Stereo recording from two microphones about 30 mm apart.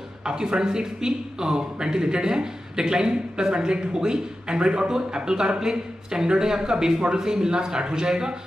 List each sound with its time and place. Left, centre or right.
0.2 s a man's voice: right